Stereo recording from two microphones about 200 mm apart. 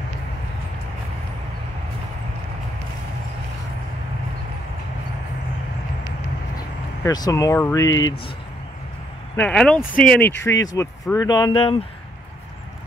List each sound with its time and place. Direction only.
6.5 s speech: 20° left (ahead or behind)
9.4 s speech: 5° left (ahead or behind); by 11.8 s 25° left (ahead or behind)